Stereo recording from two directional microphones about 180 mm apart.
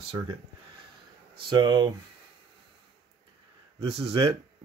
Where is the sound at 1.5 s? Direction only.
25° right (ahead or behind).